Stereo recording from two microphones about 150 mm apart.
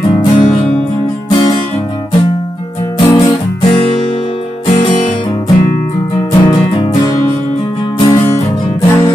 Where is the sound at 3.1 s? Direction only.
30° left (ahead or behind).